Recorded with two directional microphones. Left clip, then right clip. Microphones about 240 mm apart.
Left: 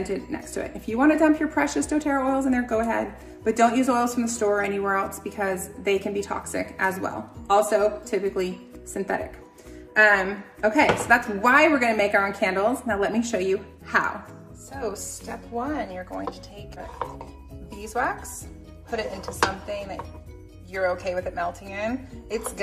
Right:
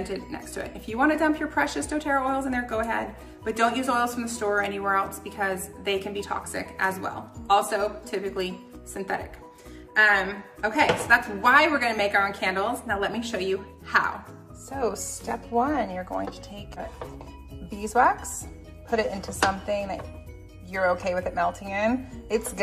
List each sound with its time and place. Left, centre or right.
0.0 s a woman's voice: centre
14.7 s speech: centre